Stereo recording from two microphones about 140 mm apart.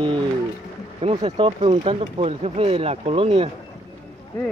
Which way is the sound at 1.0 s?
50° right (ahead or behind).